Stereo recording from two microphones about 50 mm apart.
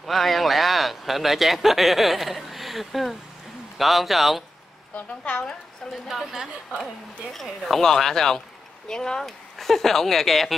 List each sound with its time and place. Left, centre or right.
0.0 s speech: centre
5.2 s a woman's voice: left
6.0 s speech: centre